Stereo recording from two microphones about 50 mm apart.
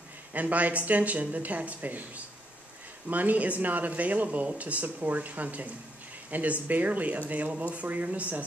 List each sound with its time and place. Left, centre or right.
0.3 s speech: right